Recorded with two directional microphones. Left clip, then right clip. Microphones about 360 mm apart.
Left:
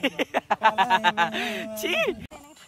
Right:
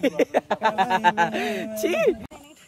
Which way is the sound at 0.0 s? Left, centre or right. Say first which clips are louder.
Right 4 dB; centre.